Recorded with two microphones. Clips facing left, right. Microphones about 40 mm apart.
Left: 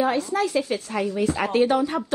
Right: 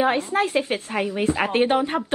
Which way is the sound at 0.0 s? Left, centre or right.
Right.